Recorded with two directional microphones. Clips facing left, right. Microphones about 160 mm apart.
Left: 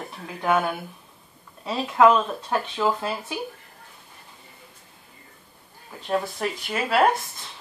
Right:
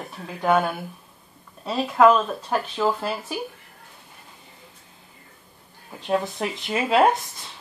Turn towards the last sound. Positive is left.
turn(degrees=-20)  # may be behind; listen again after turning